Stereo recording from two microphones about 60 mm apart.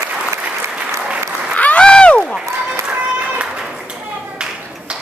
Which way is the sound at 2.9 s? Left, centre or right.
Right.